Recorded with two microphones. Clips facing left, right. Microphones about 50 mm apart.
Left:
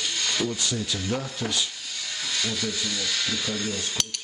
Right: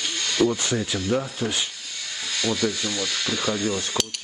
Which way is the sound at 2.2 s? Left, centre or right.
Centre.